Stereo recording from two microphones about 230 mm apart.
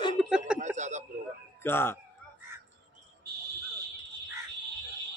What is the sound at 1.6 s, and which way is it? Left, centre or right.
Speech, centre.